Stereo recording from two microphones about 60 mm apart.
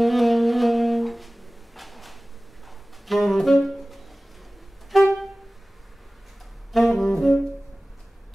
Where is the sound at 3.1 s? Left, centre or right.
Centre.